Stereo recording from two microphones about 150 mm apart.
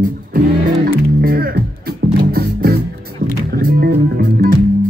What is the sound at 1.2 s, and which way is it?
Speech, 85° right.